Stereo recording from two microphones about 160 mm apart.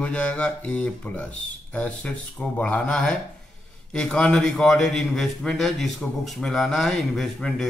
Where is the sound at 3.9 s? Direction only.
5° left (ahead or behind).